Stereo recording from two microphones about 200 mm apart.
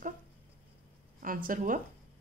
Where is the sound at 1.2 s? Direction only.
45° right (ahead or behind).